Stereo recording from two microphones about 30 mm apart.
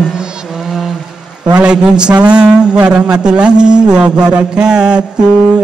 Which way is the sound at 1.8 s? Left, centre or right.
Right.